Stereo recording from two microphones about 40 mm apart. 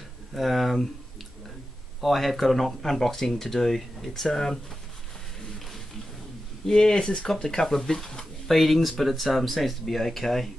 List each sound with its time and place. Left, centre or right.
0.3 s speech: centre
2.0 s speech: centre
6.6 s speech: centre
8.5 s speech: centre